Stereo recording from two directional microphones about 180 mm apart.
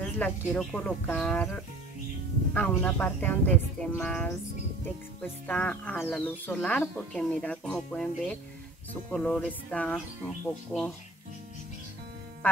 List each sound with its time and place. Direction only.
0.2 s speech: 10° left (ahead or behind)